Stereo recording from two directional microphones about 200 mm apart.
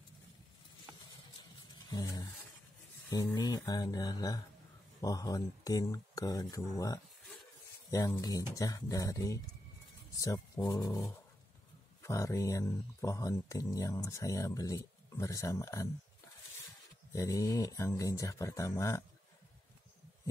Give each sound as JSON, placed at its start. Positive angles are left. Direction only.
{"t": 1.9, "sound": "speech", "side_deg": 20}
{"t": 17.1, "sound": "speech", "side_deg": 15}